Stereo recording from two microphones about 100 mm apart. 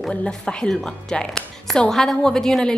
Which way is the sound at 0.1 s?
10° left (ahead or behind).